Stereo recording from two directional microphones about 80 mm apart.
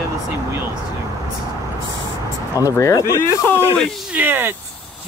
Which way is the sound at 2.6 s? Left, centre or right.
Left.